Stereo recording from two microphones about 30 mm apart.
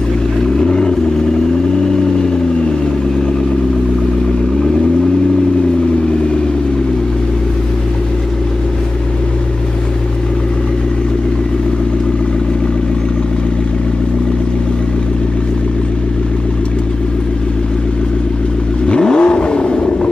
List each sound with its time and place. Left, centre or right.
0.6 s vehicle: left
18.9 s vehicle: left